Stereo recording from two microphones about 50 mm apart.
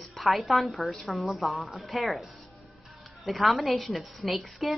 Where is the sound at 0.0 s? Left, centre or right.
Centre.